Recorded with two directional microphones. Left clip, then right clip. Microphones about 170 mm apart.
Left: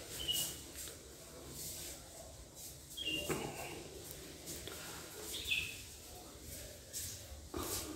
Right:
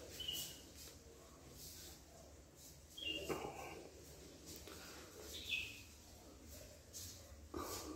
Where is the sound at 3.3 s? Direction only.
Centre (ahead or behind).